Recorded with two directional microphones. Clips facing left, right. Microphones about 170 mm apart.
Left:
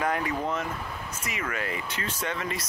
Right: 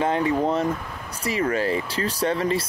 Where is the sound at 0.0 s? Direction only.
30° right (ahead or behind).